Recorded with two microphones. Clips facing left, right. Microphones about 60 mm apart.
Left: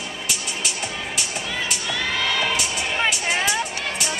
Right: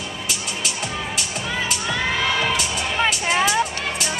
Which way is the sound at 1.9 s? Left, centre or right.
Centre.